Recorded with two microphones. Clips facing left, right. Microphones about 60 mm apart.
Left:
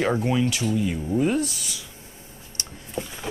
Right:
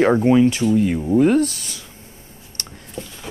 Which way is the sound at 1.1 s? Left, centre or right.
Right.